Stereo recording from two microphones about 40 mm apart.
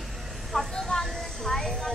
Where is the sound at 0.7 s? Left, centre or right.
Centre.